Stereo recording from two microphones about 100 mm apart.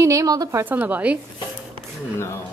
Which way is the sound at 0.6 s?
15° right (ahead or behind).